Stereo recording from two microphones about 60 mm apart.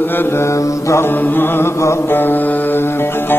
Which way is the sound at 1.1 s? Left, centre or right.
Left.